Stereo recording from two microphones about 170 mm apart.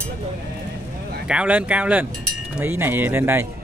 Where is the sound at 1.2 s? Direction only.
5° right (ahead or behind).